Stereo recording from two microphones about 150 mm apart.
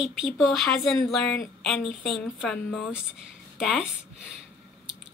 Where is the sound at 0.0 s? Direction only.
Centre (ahead or behind).